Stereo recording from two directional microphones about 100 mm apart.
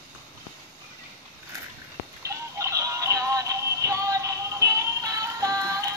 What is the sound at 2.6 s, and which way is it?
Synthetic singing, 35° right (ahead or behind).